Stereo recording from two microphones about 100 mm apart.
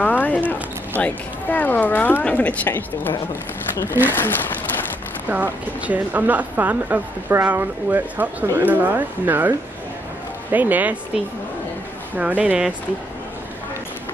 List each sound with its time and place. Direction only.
0.0 s speech: 15° left (ahead or behind)
5.3 s speech: 15° right (ahead or behind)
12.2 s speech: 15° right (ahead or behind)